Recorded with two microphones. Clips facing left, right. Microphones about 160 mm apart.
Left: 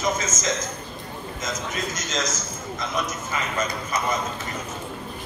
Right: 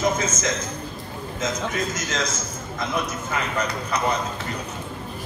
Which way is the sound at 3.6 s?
70° right (ahead or behind).